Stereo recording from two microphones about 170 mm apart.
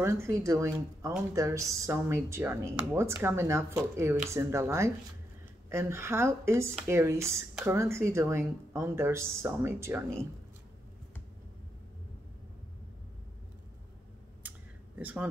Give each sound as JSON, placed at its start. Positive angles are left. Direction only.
{"t": 0.0, "sound": "speech", "side_deg": -15}
{"t": 15.0, "sound": "speech", "side_deg": -10}